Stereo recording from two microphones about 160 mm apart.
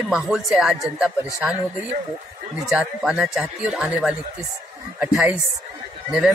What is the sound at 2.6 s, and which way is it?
Speech, 5° right (ahead or behind).